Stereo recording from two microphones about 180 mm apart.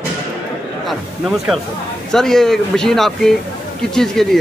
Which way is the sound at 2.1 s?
Centre (ahead or behind).